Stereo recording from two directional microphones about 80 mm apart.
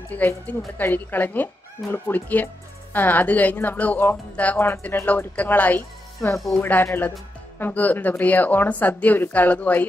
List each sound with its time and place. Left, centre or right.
0.1 s speech: left